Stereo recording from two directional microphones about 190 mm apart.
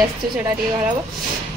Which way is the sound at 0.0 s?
10° right (ahead or behind).